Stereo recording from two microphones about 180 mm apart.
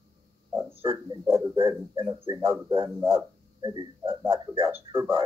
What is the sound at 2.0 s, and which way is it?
Speech, 30° right (ahead or behind).